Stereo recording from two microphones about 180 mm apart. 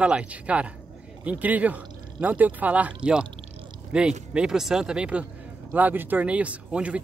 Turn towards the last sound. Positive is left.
turn(degrees=-5)  # may be behind; listen again after turning